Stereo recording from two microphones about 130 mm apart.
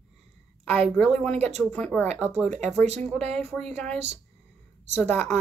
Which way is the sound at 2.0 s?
55° right (ahead or behind).